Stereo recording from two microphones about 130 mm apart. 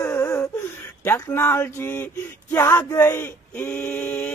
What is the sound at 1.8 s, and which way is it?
A man's voice, 15° left (ahead or behind).